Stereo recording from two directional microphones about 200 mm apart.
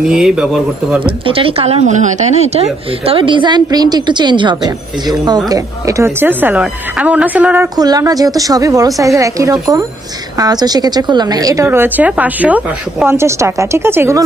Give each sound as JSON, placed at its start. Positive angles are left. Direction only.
{"t": 0.0, "sound": "speech", "side_deg": -5}
{"t": 1.2, "sound": "a woman's voice", "side_deg": -25}